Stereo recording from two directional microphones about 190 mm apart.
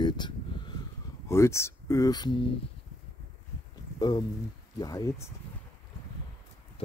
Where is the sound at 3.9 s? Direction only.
20° left (ahead or behind).